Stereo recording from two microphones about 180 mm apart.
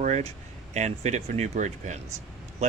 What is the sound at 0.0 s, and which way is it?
Speech, 40° right (ahead or behind).